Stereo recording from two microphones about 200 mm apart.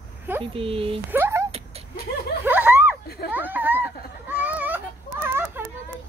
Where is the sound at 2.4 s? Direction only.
10° right (ahead or behind).